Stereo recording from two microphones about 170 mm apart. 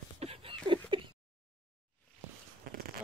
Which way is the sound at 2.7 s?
60° right (ahead or behind).